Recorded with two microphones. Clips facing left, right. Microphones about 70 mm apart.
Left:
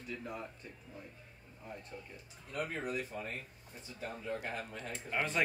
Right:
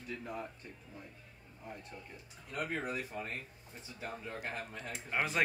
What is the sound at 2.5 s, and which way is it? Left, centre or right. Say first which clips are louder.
Speech: right 1 dB; right.